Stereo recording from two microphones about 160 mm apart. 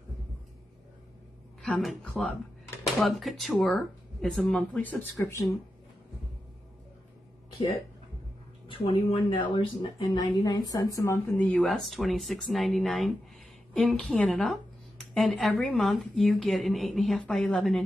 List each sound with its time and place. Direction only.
1.6 s speech: centre (ahead or behind)
8.6 s speech: 30° left (ahead or behind)
11.2 s speech: 5° left (ahead or behind)